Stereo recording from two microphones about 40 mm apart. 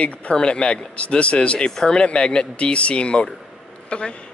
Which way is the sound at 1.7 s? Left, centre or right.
Centre.